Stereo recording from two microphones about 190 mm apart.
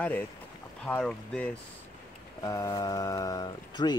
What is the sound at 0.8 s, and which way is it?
Speech, 5° left (ahead or behind).